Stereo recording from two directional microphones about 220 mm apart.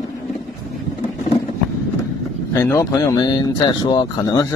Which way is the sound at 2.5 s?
15° left (ahead or behind).